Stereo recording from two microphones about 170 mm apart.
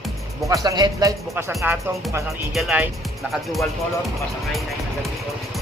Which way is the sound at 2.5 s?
Centre (ahead or behind).